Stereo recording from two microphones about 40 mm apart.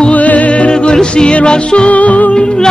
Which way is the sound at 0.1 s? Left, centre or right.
Left.